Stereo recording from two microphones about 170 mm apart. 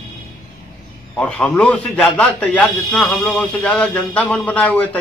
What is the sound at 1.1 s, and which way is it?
A man's voice, 5° left (ahead or behind).